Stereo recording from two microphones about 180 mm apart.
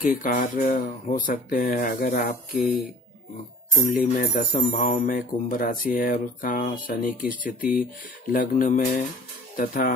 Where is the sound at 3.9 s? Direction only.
50° left (ahead or behind).